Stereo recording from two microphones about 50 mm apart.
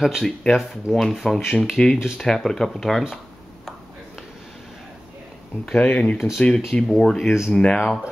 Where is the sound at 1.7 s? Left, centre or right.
Centre.